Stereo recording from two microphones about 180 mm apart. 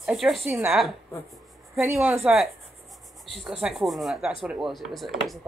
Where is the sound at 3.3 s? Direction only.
Centre (ahead or behind).